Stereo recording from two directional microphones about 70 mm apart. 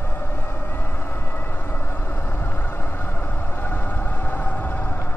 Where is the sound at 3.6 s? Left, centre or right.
Left.